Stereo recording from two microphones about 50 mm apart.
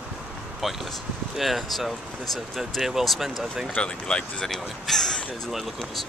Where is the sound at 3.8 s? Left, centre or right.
Centre.